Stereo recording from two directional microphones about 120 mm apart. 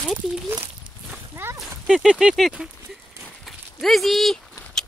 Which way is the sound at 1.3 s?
20° right (ahead or behind).